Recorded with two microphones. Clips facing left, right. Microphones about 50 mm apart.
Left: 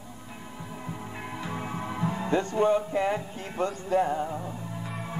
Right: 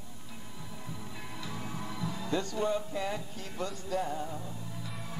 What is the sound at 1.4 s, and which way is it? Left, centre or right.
Music, left.